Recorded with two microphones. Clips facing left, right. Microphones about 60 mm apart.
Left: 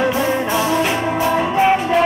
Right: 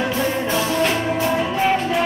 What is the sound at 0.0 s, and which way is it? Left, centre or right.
Music, centre.